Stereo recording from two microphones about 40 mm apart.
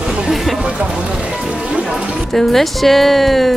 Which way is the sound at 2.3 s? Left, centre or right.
Centre.